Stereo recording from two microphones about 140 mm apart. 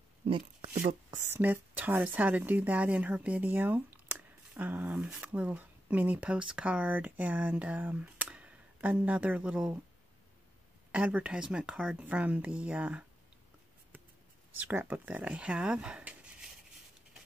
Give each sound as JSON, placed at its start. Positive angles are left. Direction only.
{"t": 0.2, "sound": "a sound", "side_deg": -50}
{"t": 0.7, "sound": "a woman's voice", "side_deg": -15}
{"t": 10.9, "sound": "speech", "side_deg": -10}
{"t": 14.6, "sound": "speech", "side_deg": -15}